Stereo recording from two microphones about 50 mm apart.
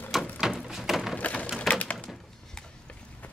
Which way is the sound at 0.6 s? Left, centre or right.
Centre.